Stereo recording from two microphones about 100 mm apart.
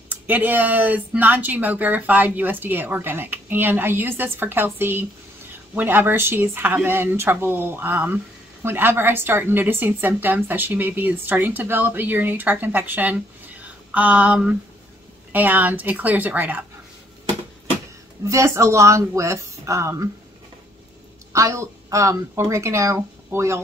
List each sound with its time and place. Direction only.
0.1 s a woman's voice: 15° right (ahead or behind)
18.2 s a woman's voice: 30° right (ahead or behind)
21.3 s speech: 30° right (ahead or behind)